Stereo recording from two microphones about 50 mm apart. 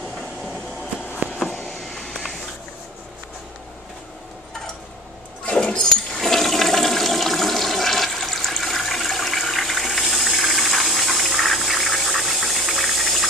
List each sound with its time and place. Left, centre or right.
1.2 s a sound: right
1.6 s vehicle: centre
5.4 s toilet flush: centre